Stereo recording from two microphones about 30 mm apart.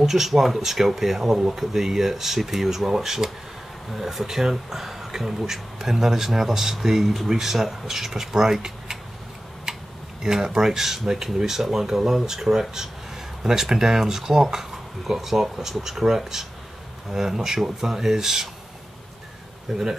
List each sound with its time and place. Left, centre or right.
0.0 s speech: centre
10.2 s speech: right
19.7 s speech: right